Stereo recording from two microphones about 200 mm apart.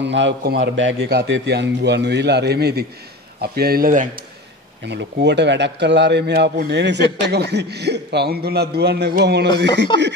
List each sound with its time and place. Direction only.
0.0 s a man's voice: 60° right (ahead or behind); by 4.1 s 45° right (ahead or behind)
4.8 s a man's voice: 60° right (ahead or behind)
9.9 s chuckle: 25° left (ahead or behind)